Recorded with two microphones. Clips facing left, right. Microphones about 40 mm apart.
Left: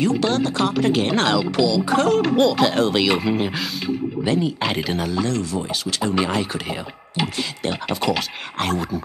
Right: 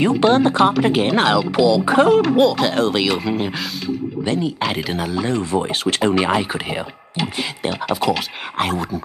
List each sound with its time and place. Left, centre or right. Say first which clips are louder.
0.0 s speech: right 5 dB; right
0.7 s speech: right 3 dB; centre
2.3 s speech: right 1 dB; centre
5.2 s speech: right 3 dB; right
5.9 s speech: right 7 dB; right
6.1 s speech: right 3 dB; centre
7.9 s speech: right 3 dB; centre